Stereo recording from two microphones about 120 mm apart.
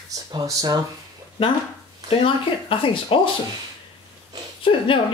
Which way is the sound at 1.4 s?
50° left (ahead or behind).